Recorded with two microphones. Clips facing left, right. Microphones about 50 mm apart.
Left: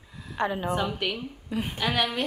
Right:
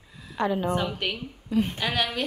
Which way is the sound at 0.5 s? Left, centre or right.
Centre.